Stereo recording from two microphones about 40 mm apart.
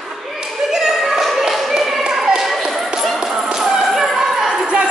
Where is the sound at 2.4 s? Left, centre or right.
Centre.